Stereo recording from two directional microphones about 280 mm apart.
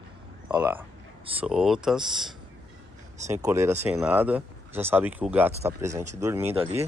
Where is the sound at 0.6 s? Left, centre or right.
Centre.